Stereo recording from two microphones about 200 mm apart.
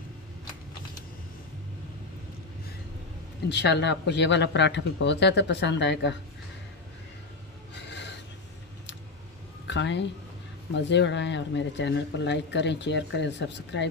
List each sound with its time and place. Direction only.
3.4 s speech: 60° left (ahead or behind)
9.7 s speech: 60° left (ahead or behind)